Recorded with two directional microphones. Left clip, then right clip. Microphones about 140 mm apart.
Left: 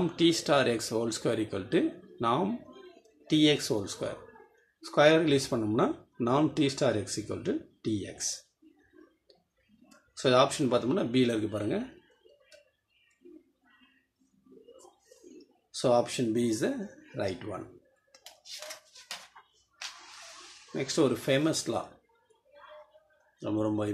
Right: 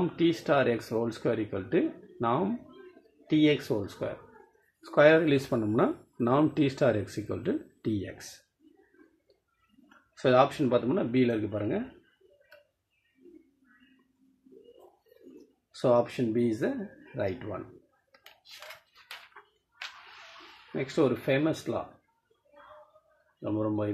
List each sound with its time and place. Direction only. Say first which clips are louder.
0.1 s speech: left 3 dB; 15° right (ahead or behind)
10.1 s speech: right 1 dB; 20° right (ahead or behind)
15.7 s speech: right 1 dB; 20° right (ahead or behind)
16.2 s speech: right 1 dB; 10° right (ahead or behind)
19.4 s a sound: right 2 dB; 20° right (ahead or behind)
20.7 s speech: even; 15° right (ahead or behind)
23.4 s speech: even; 5° right (ahead or behind)